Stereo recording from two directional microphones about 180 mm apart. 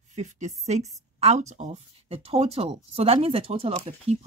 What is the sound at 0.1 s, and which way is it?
A woman's voice, 40° right (ahead or behind).